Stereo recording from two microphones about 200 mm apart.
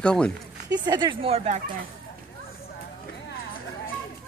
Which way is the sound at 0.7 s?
20° right (ahead or behind).